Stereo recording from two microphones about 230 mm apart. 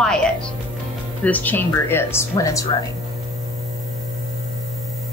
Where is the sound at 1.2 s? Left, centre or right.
Centre.